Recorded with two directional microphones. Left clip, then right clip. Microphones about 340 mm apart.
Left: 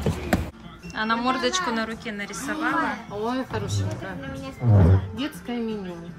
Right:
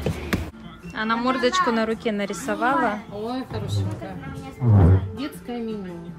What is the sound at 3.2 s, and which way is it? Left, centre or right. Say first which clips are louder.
Speech: left 2 dB; centre.